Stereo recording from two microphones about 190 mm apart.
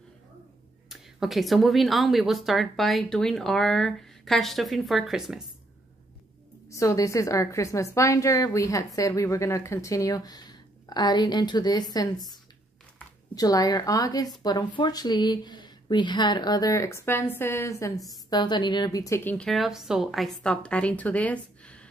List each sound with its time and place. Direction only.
0.8 s a woman's voice: centre (ahead or behind)
6.7 s a woman's voice: 15° left (ahead or behind)